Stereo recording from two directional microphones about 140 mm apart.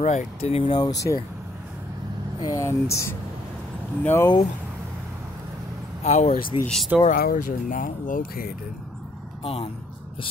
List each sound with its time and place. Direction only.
0.0 s speech: 55° left (ahead or behind)
0.7 s speech: 30° left (ahead or behind)
2.4 s speech: 20° left (ahead or behind)
6.0 s speech: 55° left (ahead or behind)
6.6 s speech: 5° left (ahead or behind)
7.1 s speech: 80° left
9.4 s speech: 45° left (ahead or behind)